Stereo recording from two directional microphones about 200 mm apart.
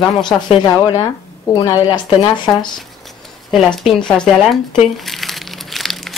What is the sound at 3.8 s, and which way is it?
Speech, 5° left (ahead or behind).